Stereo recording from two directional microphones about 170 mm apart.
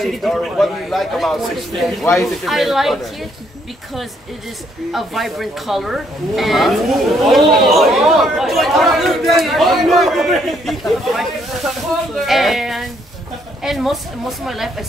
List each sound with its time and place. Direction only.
0.0 s speech: centre (ahead or behind)
4.9 s speech: centre (ahead or behind)